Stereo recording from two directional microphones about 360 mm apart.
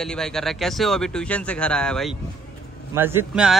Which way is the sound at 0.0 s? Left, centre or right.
Centre.